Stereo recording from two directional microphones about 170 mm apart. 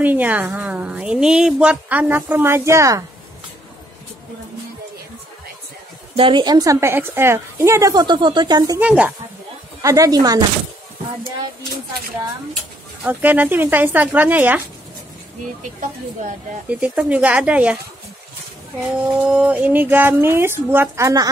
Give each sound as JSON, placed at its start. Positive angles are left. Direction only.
{"t": 0.0, "sound": "speech", "side_deg": -10}
{"t": 6.1, "sound": "a woman's voice", "side_deg": -30}
{"t": 8.7, "sound": "speech", "side_deg": -10}
{"t": 9.8, "sound": "a woman's voice", "side_deg": -20}
{"t": 13.0, "sound": "speech", "side_deg": -10}
{"t": 16.6, "sound": "speech", "side_deg": -5}
{"t": 19.0, "sound": "speech", "side_deg": -5}